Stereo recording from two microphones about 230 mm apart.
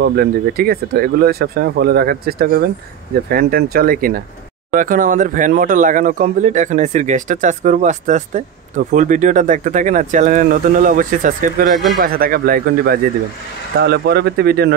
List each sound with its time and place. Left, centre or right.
0.0 s speech: right